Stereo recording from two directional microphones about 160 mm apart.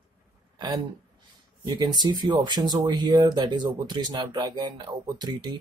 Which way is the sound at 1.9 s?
25° right (ahead or behind).